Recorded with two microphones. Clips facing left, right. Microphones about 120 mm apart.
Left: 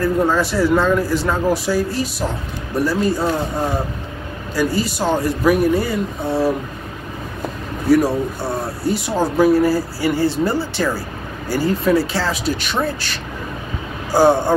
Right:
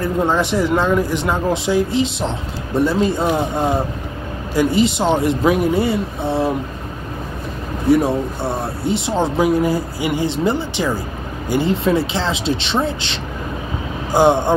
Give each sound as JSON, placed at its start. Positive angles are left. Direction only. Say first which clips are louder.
{"t": 0.0, "sound": "speech", "louder": "left 1 dB", "side_deg": -20}
{"t": 7.9, "sound": "speech", "louder": "even", "side_deg": -25}